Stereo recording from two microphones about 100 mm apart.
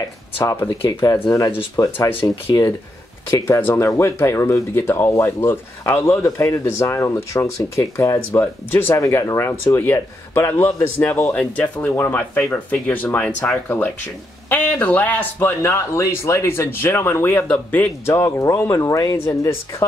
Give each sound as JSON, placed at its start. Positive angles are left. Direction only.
{"t": 0.7, "sound": "speech", "side_deg": 40}
{"t": 1.1, "sound": "speech", "side_deg": 30}
{"t": 1.8, "sound": "speech", "side_deg": 40}
{"t": 9.0, "sound": "speech", "side_deg": 30}
{"t": 18.1, "sound": "speech", "side_deg": 35}